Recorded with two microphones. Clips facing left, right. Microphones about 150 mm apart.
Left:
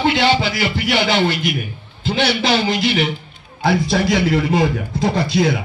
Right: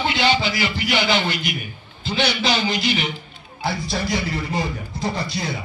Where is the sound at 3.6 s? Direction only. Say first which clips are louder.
Left 8 dB; 75° left (ahead or behind).